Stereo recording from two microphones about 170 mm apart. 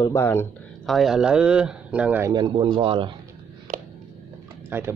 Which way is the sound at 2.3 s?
30° right (ahead or behind).